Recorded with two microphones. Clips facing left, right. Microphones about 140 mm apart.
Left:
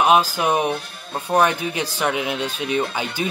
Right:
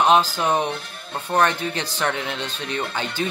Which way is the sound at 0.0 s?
10° left (ahead or behind).